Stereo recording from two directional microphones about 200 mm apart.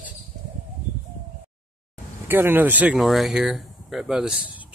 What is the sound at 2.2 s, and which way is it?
Speech, 10° right (ahead or behind).